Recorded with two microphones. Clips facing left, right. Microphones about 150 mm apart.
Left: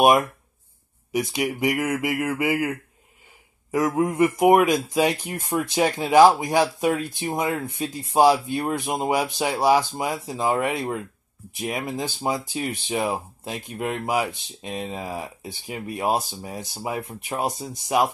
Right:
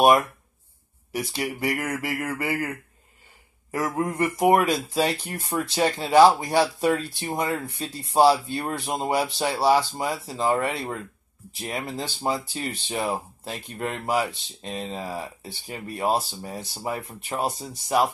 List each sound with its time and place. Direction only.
1.3 s speech: 15° left (ahead or behind)
3.7 s speech: 15° left (ahead or behind)